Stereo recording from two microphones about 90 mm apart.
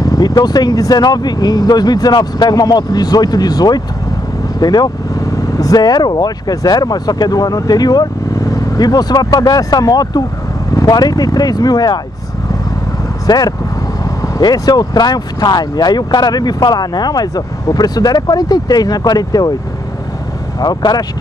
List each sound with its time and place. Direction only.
0.0 s speech: 45° left (ahead or behind)
13.3 s speech: 55° left (ahead or behind)
20.6 s speech: 50° left (ahead or behind)